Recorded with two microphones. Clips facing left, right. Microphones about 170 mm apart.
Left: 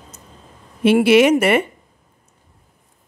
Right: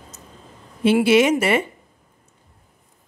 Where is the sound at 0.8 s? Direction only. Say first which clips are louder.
Left 3 dB; 65° left (ahead or behind).